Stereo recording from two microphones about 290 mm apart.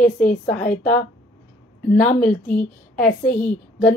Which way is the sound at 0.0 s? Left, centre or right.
Left.